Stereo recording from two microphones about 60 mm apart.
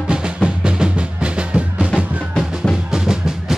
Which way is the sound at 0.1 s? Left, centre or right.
Centre.